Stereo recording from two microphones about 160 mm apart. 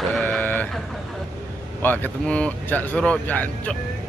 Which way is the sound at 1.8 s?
10° left (ahead or behind).